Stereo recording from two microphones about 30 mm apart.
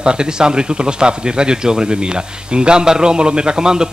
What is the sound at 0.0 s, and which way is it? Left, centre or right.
A man's voice, right.